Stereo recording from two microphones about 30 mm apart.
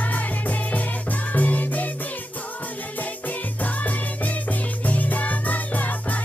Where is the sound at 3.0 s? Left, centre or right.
Left.